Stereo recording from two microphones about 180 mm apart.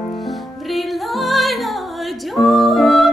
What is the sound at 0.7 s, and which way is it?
Music, centre (ahead or behind).